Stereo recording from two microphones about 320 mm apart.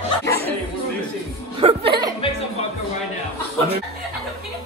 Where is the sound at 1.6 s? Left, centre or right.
Centre.